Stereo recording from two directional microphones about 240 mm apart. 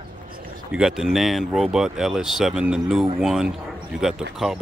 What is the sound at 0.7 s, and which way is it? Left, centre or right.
Speech, centre.